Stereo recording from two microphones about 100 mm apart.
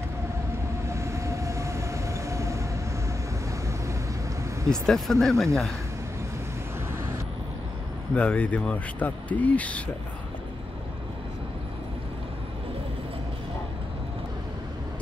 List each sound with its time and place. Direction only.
0.8 s train: 30° right (ahead or behind)
4.6 s speech: 5° left (ahead or behind)
8.1 s speech: 15° left (ahead or behind)